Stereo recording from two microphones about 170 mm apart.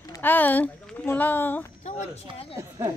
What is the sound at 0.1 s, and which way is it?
Speech, 10° left (ahead or behind).